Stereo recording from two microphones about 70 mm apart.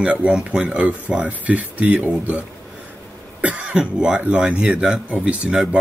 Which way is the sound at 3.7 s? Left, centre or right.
Centre.